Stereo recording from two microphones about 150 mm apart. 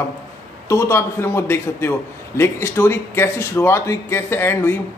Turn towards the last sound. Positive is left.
turn(degrees=15)  # may be behind; listen again after turning